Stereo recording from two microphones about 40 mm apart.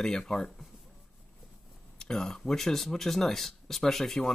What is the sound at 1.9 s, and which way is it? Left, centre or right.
Speech, centre.